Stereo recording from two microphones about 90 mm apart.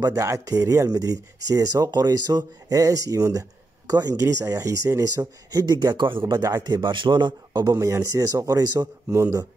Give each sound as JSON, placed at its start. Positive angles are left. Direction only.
{"t": 0.0, "sound": "speech", "side_deg": -35}
{"t": 6.0, "sound": "a man's voice", "side_deg": -60}
{"t": 6.4, "sound": "a man's voice", "side_deg": -45}
{"t": 7.6, "sound": "speech", "side_deg": -35}